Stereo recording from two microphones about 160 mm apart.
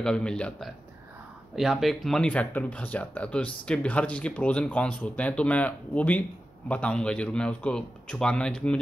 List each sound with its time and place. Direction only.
0.0 s a man's voice: 5° left (ahead or behind)